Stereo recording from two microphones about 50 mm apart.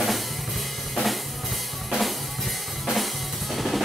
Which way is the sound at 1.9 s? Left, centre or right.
Centre.